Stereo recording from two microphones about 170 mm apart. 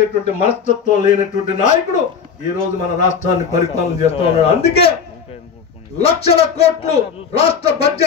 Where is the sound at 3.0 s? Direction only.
45° left (ahead or behind).